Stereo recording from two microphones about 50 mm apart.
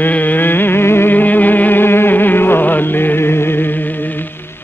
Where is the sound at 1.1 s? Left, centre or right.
Left.